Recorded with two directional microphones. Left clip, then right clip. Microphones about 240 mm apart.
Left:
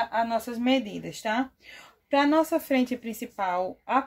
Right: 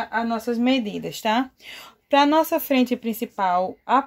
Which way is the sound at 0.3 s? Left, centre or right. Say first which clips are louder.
Right 3 dB; right.